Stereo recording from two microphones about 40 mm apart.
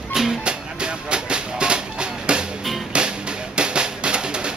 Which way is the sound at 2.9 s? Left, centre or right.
Right.